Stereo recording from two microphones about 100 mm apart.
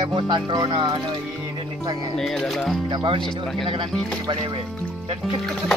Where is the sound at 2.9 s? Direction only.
50° right (ahead or behind).